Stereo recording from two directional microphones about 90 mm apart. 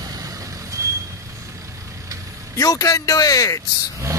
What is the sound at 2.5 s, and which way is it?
Speech, 40° left (ahead or behind).